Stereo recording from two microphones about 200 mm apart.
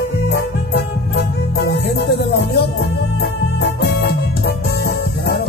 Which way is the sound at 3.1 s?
55° left (ahead or behind).